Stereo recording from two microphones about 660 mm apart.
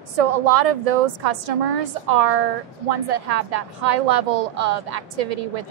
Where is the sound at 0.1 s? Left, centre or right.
Right.